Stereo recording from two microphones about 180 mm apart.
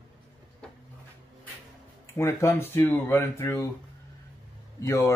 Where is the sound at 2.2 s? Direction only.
15° left (ahead or behind).